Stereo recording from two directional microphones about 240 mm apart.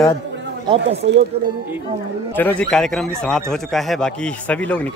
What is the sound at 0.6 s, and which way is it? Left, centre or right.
Speech, right.